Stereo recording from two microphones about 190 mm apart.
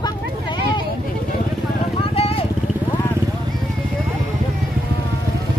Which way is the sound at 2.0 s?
30° left (ahead or behind).